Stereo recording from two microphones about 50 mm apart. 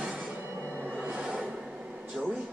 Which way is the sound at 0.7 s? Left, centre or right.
Right.